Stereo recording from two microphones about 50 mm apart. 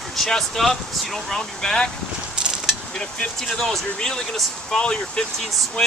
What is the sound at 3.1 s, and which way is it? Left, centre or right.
Speech, centre.